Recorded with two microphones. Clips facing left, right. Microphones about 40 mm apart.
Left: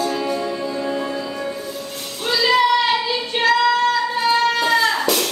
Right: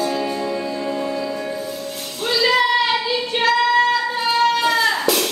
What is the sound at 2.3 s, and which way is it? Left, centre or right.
Music, centre.